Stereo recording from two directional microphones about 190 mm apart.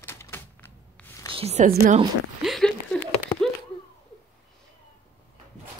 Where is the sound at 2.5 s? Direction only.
Centre (ahead or behind).